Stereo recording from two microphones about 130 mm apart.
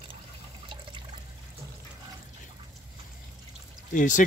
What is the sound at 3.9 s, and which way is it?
Speech, 75° left (ahead or behind).